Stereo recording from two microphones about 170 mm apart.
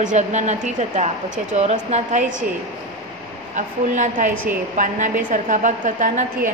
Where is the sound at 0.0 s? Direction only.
45° right (ahead or behind).